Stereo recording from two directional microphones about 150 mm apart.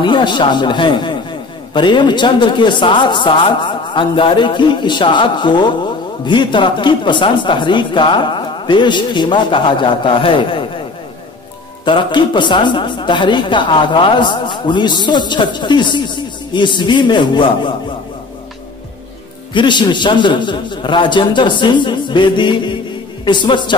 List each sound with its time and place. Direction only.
0.0 s speech: 30° left (ahead or behind)
11.8 s speech: 30° left (ahead or behind)
19.5 s speech: 30° left (ahead or behind)